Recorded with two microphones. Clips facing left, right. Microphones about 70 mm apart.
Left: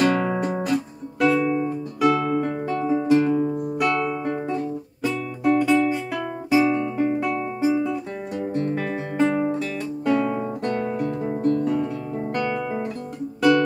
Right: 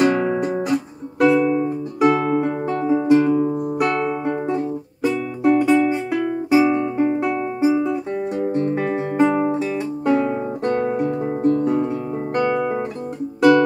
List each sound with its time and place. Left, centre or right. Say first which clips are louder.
0.0 s music: right 3 dB; centre
2.0 s music: right 3 dB; right
2.4 s music: right 3 dB; centre
7.8 s guitar: right 5 dB; right